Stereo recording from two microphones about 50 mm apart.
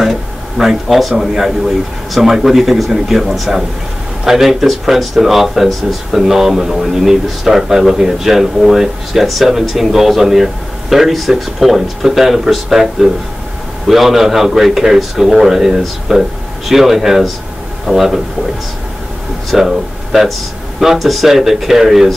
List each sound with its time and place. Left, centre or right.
0.0 s speech: centre
19.5 s speech: centre